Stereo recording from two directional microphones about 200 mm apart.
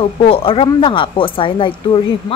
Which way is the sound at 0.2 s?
25° left (ahead or behind).